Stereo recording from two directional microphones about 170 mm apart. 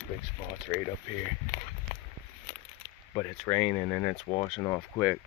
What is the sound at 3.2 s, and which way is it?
Speech, 20° left (ahead or behind).